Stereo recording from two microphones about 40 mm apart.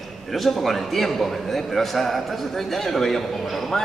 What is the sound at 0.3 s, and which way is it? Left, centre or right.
A man's voice, centre.